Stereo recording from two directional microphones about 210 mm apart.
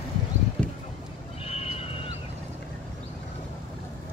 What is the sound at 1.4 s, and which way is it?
Neigh, 30° left (ahead or behind).